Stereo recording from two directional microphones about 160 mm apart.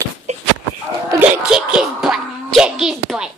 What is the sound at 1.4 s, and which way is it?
Music, 5° right (ahead or behind).